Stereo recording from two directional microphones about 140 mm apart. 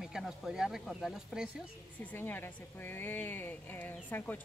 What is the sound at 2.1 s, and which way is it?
Speech, 15° left (ahead or behind).